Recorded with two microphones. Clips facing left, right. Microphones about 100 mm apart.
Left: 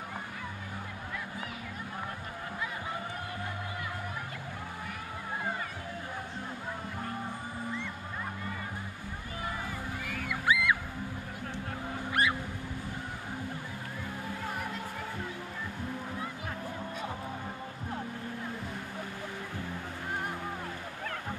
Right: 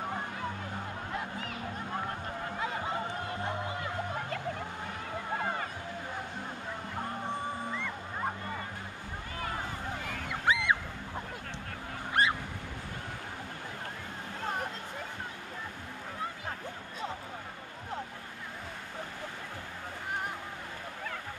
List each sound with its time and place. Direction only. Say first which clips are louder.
10.0 s music: even; 25° right (ahead or behind)
12.1 s fowl: right 1 dB; 25° right (ahead or behind)
14.4 s music: right 5 dB; 25° right (ahead or behind)